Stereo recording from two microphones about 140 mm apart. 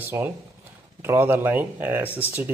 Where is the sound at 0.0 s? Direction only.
15° right (ahead or behind).